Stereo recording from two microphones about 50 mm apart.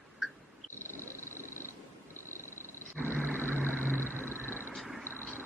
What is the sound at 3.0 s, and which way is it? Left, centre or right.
Roar, right.